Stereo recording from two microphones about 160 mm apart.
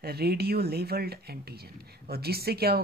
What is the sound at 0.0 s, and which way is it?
Speech, 80° right.